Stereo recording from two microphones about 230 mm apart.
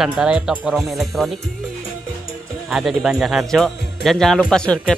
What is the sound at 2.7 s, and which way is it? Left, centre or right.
Speech, centre.